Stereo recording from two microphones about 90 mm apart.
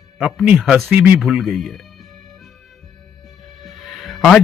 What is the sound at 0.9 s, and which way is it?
Speech, 15° right (ahead or behind).